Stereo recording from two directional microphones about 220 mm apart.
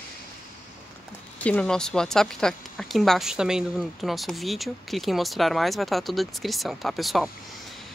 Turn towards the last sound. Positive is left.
turn(degrees=0)  # may be behind; listen again after turning